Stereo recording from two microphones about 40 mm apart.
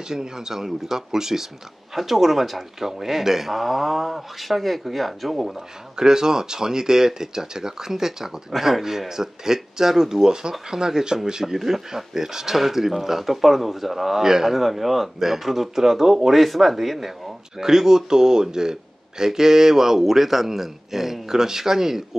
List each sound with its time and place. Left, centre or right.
0.1 s speech: centre